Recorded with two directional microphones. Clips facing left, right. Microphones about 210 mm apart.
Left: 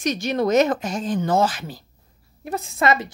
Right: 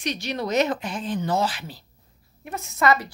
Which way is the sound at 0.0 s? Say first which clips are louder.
Left 6 dB; 45° left (ahead or behind).